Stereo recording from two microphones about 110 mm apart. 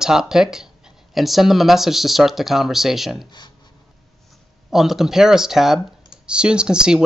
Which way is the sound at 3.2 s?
40° left (ahead or behind).